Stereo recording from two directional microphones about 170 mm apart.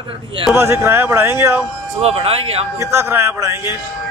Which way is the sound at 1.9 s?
35° right (ahead or behind).